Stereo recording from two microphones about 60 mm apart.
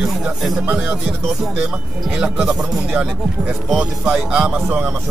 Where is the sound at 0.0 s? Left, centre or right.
Centre.